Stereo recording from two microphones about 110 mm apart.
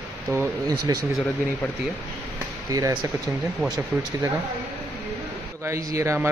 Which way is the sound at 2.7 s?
35° right (ahead or behind).